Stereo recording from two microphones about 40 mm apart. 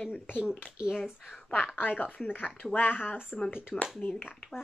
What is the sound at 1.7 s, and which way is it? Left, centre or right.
Speech, left.